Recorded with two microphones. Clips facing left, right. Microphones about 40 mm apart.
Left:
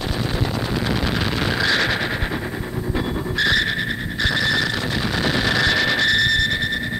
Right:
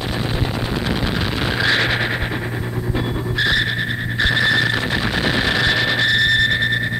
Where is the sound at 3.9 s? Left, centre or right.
Right.